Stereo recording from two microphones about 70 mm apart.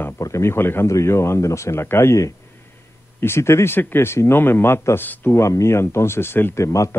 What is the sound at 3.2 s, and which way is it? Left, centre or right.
A man's voice, left.